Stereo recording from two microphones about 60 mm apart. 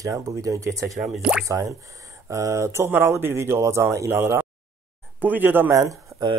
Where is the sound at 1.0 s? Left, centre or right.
Centre.